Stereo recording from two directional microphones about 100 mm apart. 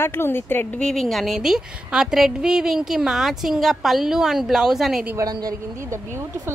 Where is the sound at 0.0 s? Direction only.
20° left (ahead or behind).